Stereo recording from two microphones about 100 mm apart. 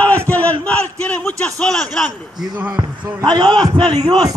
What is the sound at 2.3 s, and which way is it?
A man's voice, 45° right (ahead or behind).